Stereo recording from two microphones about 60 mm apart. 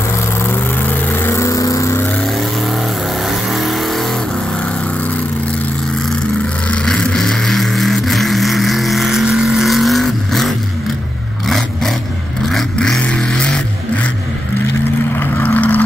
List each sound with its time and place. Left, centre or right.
0.4 s vehicle: left
1.3 s vehicle: left
2.2 s vehicle: centre
6.7 s vehicle: centre
15.4 s vehicle: left